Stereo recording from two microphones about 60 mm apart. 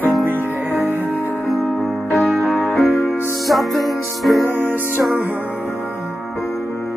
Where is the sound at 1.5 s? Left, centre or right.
Centre.